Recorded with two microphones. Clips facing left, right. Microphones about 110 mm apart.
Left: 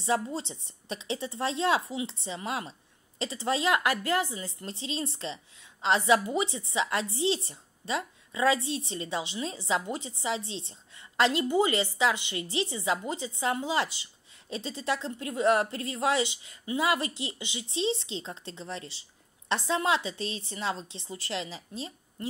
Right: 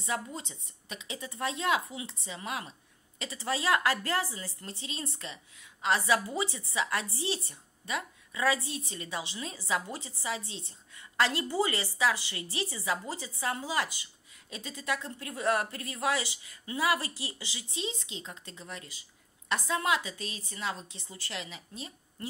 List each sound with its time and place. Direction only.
0.0 s a woman's voice: 30° left (ahead or behind)